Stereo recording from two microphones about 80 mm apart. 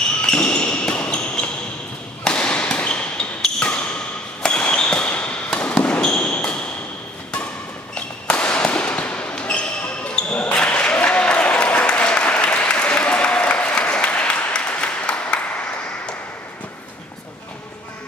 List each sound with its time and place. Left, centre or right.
0.2 s basketball bounce: centre
2.2 s a sound: centre
7.9 s basketball bounce: centre